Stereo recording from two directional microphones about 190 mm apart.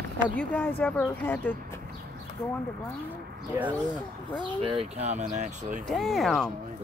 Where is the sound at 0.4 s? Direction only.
10° left (ahead or behind).